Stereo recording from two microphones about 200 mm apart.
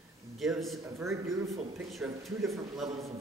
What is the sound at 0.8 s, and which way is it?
Speech, 15° right (ahead or behind).